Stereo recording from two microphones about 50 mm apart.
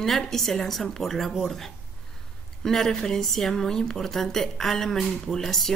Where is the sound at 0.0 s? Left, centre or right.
Centre.